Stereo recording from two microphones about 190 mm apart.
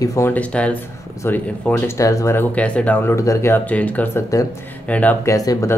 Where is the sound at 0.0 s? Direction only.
15° left (ahead or behind).